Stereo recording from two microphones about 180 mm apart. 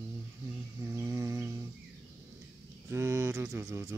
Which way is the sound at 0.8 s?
15° right (ahead or behind).